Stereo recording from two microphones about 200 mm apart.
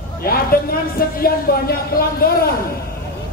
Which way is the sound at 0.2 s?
50° left (ahead or behind).